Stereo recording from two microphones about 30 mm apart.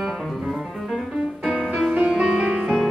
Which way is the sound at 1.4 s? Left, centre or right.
Centre.